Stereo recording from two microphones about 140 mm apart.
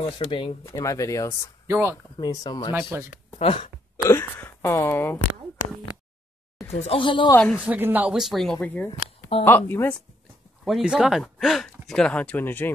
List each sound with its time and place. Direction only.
0.3 s speech: 40° left (ahead or behind)
0.7 s speech: 25° left (ahead or behind)
1.7 s speech: 20° right (ahead or behind)
2.1 s speech: 30° left (ahead or behind)
2.9 s speech: 15° right (ahead or behind)
3.3 s speech: 40° left (ahead or behind)
3.9 s a sound: 20° left (ahead or behind)
6.8 s speech: 40° left (ahead or behind)
7.3 s speech: 10° left (ahead or behind)
7.6 s speech: 10° right (ahead or behind)
8.5 s speech: 10° left (ahead or behind)
10.6 s speech: centre (ahead or behind); by 12.7 s 15° left (ahead or behind)